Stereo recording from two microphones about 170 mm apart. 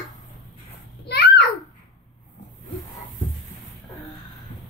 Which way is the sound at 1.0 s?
65° left (ahead or behind).